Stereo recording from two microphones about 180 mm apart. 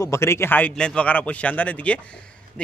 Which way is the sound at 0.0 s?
15° left (ahead or behind).